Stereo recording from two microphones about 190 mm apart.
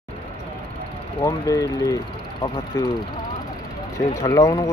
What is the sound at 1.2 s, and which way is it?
Speech, 15° left (ahead or behind).